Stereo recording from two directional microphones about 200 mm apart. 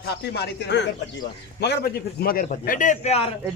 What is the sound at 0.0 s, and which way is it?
A man's voice, 55° left (ahead or behind).